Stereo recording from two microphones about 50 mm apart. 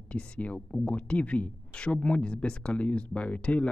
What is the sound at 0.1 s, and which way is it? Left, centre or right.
Speech, left.